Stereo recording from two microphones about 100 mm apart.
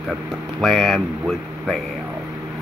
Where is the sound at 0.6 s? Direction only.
Centre (ahead or behind).